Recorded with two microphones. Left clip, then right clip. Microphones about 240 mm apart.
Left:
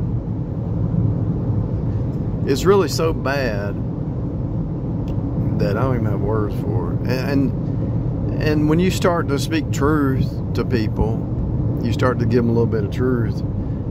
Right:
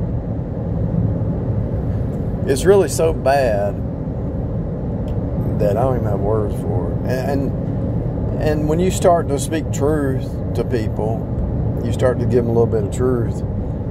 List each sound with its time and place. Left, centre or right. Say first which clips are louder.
2.4 s speech: right 2 dB; centre
5.6 s speech: right 5 dB; centre
8.5 s speech: even; centre
12.0 s speech: right 2 dB; centre